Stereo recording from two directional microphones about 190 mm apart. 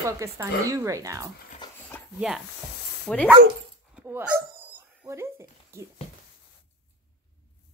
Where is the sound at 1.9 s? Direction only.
10° left (ahead or behind).